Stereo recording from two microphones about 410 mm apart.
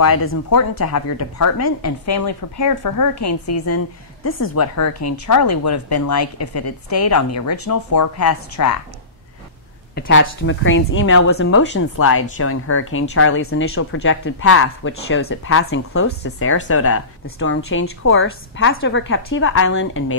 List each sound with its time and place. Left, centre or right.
0.0 s speech: left
9.9 s speech: left